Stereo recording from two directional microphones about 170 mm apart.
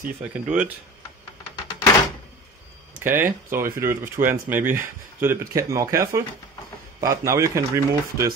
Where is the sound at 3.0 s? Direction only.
10° right (ahead or behind).